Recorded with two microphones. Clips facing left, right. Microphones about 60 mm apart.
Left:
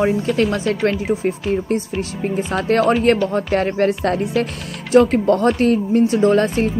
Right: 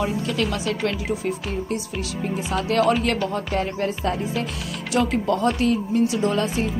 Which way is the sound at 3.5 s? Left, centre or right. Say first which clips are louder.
Left 7 dB; left.